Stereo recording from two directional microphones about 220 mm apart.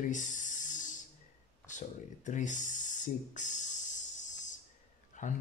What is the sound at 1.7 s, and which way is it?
Speech, 35° left (ahead or behind).